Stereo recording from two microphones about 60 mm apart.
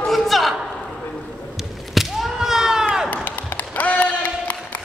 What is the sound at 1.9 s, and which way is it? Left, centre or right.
Whip, centre.